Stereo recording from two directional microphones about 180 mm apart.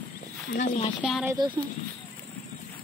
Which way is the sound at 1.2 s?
20° right (ahead or behind).